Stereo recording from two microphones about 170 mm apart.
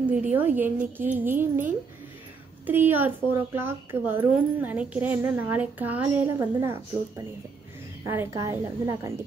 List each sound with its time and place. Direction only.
0.1 s a woman's voice: 10° right (ahead or behind)
8.1 s a woman's voice: 15° right (ahead or behind)